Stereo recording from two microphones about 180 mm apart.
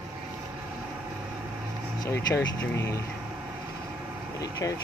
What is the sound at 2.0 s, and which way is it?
Speech, 15° left (ahead or behind).